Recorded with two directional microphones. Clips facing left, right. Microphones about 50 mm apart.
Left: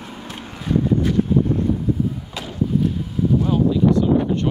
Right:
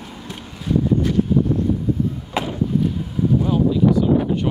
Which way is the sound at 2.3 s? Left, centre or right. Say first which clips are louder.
Right 8 dB; right.